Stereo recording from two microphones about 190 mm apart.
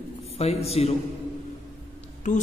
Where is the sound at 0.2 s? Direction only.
35° left (ahead or behind).